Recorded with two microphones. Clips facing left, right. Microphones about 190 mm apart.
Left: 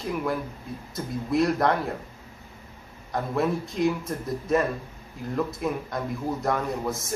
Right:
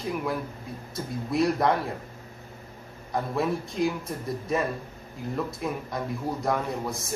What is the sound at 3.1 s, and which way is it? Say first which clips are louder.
A man's voice: left 1 dB; centre (ahead or behind).